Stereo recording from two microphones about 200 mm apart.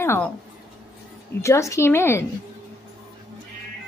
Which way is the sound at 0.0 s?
10° left (ahead or behind).